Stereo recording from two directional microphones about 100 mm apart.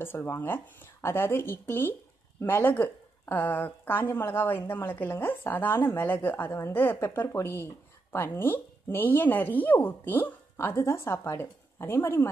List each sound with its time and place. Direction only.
0.0 s a woman's voice: 20° left (ahead or behind)